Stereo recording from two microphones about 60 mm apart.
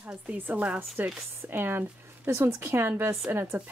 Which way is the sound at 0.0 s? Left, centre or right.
Right.